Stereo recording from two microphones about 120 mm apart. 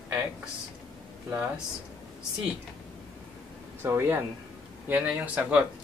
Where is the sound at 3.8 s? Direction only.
20° right (ahead or behind).